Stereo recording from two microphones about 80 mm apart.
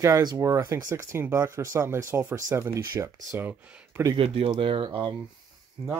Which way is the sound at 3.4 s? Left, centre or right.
Right.